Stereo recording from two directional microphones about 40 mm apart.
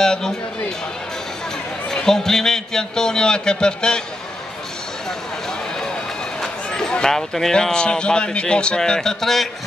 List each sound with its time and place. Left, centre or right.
0.0 s a man's voice: centre
1.9 s a man's voice: centre
6.9 s a man's voice: centre